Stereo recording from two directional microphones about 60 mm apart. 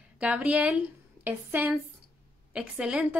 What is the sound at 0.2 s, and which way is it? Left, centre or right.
A woman's voice, centre.